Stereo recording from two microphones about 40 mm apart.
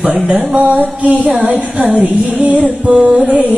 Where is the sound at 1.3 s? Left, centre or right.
Right.